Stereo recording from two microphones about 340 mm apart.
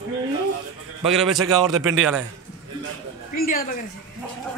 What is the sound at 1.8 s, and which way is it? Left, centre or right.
Speech, right.